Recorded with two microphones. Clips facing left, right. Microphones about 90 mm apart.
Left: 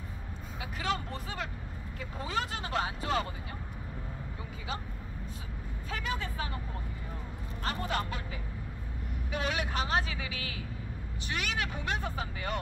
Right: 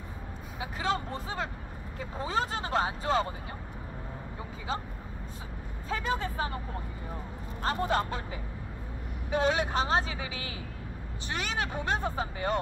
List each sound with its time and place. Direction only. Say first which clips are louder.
0.6 s vehicle: right 3 dB; 30° right (ahead or behind)
2.0 s speech: right 4 dB; 30° right (ahead or behind)
5.9 s speech: right 5 dB; 35° right (ahead or behind)
7.6 s speech: right 5 dB; 35° right (ahead or behind)